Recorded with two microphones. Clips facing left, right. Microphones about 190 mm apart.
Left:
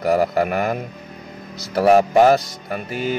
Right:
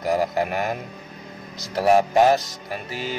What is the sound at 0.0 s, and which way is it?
Speech, 60° left (ahead or behind).